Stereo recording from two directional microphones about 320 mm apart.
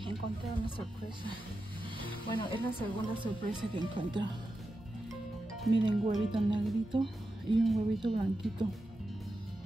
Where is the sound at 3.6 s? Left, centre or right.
Centre.